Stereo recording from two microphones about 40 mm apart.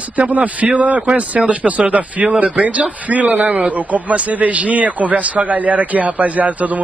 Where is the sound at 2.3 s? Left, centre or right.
Right.